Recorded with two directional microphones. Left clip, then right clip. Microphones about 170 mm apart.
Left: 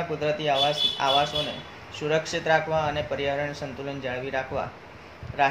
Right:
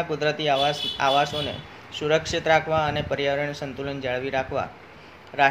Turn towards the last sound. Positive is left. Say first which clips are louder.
# right 3 dB
turn(degrees=-45)  # may be behind; listen again after turning